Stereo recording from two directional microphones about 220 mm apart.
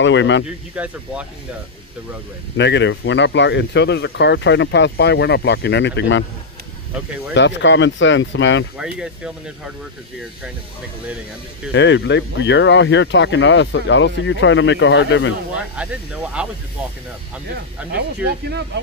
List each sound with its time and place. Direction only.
0.0 s speech: 55° left (ahead or behind)
0.8 s speech: 5° right (ahead or behind)
2.5 s speech: 55° left (ahead or behind)
7.3 s speech: 55° left (ahead or behind)
8.7 s speech: 5° right (ahead or behind)
11.7 s speech: 55° left (ahead or behind)
15.5 s speech: 5° right (ahead or behind)